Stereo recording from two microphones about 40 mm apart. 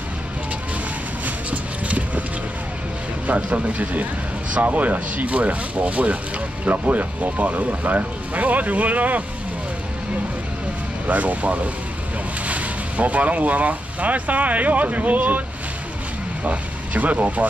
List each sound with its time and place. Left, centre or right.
1.2 s a sound: right
3.3 s speech: right
11.1 s speech: right
16.4 s speech: right